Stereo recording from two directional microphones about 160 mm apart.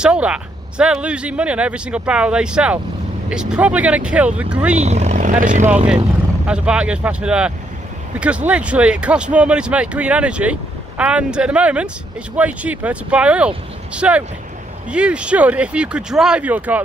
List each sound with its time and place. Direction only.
0.0 s speech: 5° right (ahead or behind)
4.7 s speech: 45° right (ahead or behind)
6.4 s speech: 5° right (ahead or behind)